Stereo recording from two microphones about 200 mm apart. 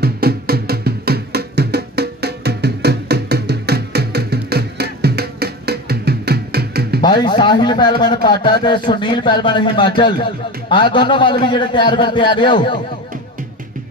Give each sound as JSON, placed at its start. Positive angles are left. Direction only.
{"t": 0.0, "sound": "music", "side_deg": -50}
{"t": 7.0, "sound": "speech", "side_deg": 20}